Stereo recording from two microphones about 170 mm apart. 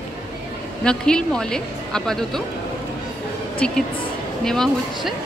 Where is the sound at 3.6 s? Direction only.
5° left (ahead or behind).